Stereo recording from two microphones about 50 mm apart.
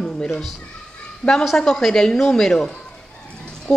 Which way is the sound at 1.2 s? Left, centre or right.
Left.